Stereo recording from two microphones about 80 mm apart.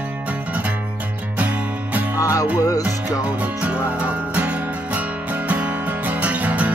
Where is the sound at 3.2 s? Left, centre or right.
Centre.